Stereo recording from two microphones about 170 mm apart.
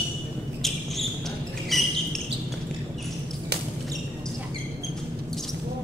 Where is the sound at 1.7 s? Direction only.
Centre (ahead or behind).